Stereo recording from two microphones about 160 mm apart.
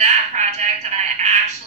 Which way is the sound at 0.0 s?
45° right (ahead or behind).